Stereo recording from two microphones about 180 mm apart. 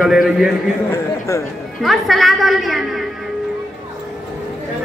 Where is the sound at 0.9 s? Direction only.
15° left (ahead or behind).